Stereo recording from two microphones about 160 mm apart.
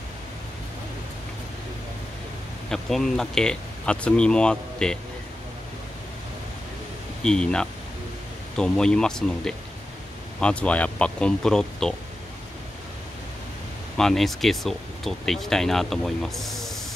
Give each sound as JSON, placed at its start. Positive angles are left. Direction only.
{"t": 2.7, "sound": "speech", "side_deg": 5}
{"t": 7.2, "sound": "speech", "side_deg": 5}
{"t": 13.9, "sound": "speech", "side_deg": 0}